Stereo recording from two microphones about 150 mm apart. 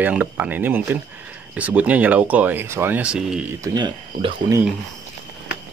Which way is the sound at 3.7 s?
30° right (ahead or behind).